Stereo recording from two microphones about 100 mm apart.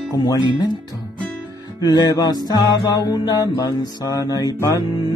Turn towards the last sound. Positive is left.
turn(degrees=35)  # may be behind; listen again after turning